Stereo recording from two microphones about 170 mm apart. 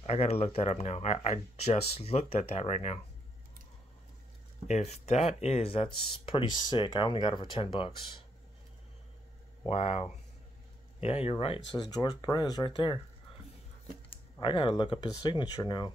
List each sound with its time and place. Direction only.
0.0 s speech: 40° left (ahead or behind)
4.6 s speech: 40° left (ahead or behind)
9.7 s speech: 35° left (ahead or behind)
14.1 s speech: 30° left (ahead or behind)